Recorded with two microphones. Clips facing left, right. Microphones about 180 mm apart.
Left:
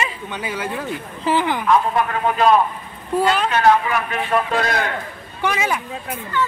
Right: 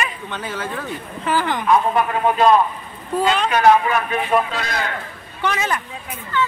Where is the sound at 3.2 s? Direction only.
5° left (ahead or behind).